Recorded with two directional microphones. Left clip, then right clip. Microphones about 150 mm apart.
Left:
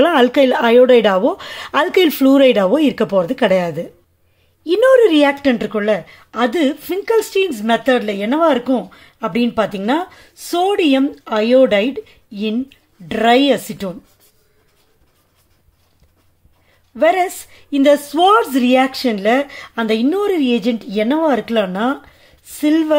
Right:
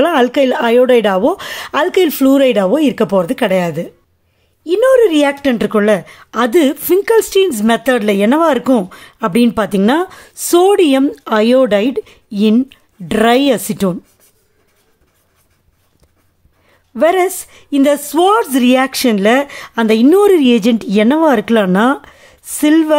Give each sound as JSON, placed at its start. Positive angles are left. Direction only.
{"t": 0.0, "sound": "a woman's voice", "side_deg": -10}
{"t": 5.6, "sound": "a woman's voice", "side_deg": -35}
{"t": 16.9, "sound": "a woman's voice", "side_deg": -40}
{"t": 20.1, "sound": "a woman's voice", "side_deg": -45}